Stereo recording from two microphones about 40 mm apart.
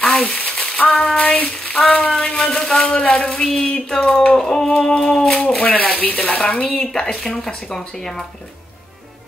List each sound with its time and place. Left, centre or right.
0.0 s a sound: left
1.0 s speech: left
4.4 s speech: centre
5.6 s speech: left
6.8 s speech: centre